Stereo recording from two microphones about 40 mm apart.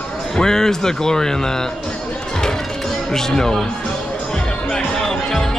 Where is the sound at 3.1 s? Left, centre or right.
Centre.